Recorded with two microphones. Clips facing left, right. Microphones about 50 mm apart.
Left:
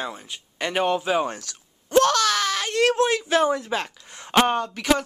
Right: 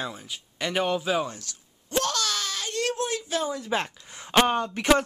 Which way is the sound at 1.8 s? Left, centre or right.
Left.